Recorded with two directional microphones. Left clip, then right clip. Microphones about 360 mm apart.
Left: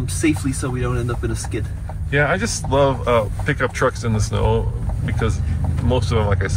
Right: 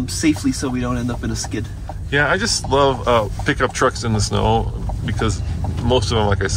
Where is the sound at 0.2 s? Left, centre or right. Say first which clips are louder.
Right 1 dB; right.